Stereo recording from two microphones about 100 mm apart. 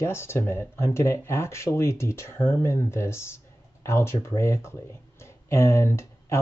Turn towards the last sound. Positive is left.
turn(degrees=25)  # may be behind; listen again after turning